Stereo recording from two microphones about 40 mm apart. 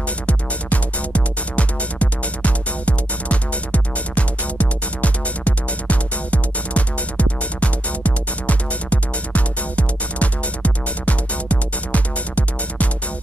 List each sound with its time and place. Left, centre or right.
0.3 s music: left